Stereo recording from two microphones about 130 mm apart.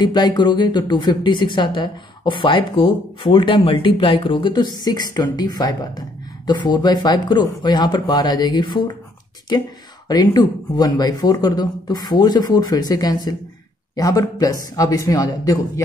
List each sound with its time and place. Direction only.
0.0 s speech: 35° left (ahead or behind)
10.0 s a man's voice: 30° left (ahead or behind)